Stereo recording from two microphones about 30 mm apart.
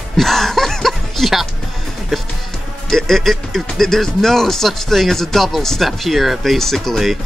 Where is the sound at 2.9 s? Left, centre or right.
Centre.